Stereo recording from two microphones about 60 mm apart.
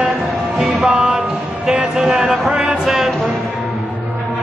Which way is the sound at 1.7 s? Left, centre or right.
Centre.